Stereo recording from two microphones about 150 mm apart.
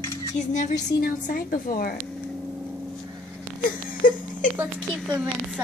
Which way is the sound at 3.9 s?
65° left (ahead or behind).